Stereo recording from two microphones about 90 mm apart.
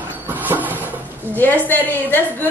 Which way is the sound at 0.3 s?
20° right (ahead or behind).